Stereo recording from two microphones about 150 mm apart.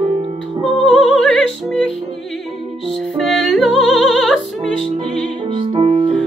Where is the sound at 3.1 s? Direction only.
Centre (ahead or behind).